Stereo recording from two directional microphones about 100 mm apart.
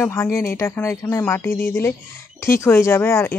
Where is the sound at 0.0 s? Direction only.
25° left (ahead or behind).